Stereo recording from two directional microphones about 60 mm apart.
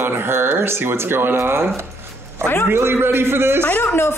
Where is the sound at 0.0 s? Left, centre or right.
Right.